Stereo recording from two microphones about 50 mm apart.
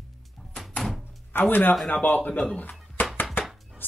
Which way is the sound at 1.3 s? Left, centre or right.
Left.